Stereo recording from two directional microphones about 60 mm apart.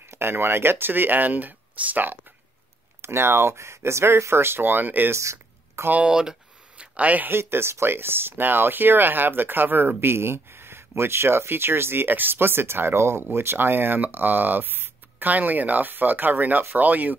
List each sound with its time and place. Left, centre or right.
0.1 s speech: right
3.0 s speech: right
5.1 s a sound: right
6.0 s speech: centre
6.8 s a man's voice: right
7.2 s speech: right